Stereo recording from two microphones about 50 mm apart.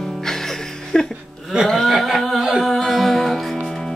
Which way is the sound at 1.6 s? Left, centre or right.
Centre.